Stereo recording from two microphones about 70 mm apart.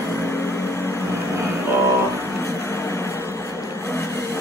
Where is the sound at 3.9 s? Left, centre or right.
Left.